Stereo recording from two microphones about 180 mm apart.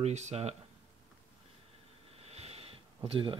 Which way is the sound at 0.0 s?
40° right (ahead or behind).